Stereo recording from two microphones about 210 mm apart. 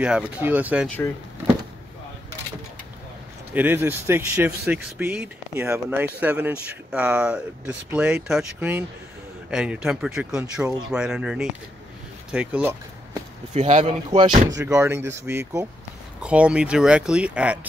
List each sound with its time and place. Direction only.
0.0 s speech: 5° right (ahead or behind)
0.8 s speech: 10° left (ahead or behind)
3.5 s speech: 10° right (ahead or behind)
13.5 s speech: 35° right (ahead or behind)
14.1 s speech: 20° right (ahead or behind); by 17.6 s 5° right (ahead or behind)